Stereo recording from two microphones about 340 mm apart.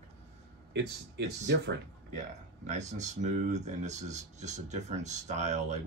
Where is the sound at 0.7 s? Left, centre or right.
Right.